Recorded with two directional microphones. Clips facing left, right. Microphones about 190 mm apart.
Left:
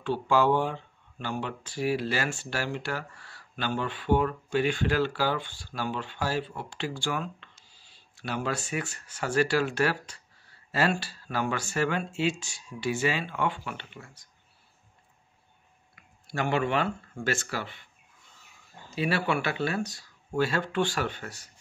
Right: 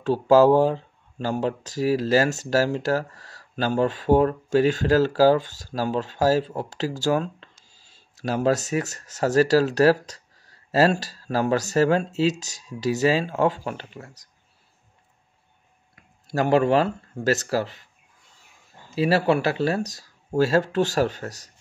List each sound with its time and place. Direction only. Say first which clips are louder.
0.0 s speech: right 9 dB; 40° right (ahead or behind)
16.3 s speech: right 8 dB; 40° right (ahead or behind)
18.9 s speech: right 7 dB; 35° right (ahead or behind)